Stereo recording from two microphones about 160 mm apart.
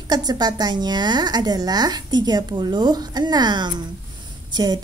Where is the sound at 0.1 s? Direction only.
25° right (ahead or behind).